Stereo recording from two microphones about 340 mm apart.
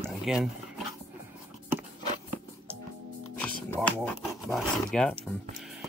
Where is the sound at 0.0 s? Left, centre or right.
Centre.